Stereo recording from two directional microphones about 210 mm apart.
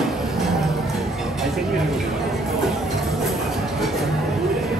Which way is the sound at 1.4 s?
Centre (ahead or behind).